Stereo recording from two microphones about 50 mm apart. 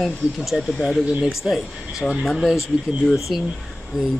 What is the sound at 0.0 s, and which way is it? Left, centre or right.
Speech, centre.